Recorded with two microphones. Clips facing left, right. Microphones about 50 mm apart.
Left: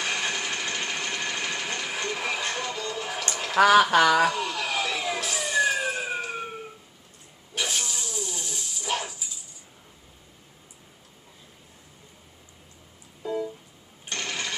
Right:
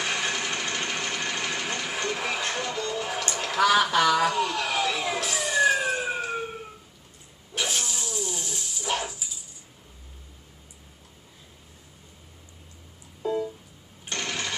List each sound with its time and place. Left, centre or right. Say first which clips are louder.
0.0 s sewing machine: right 1 dB; centre
3.6 s a sound: left 3 dB; left
4.2 s vehicle: even; centre
7.5 s a sound: even; centre
13.2 s music: right 2 dB; centre
14.0 s cash register: right 1 dB; centre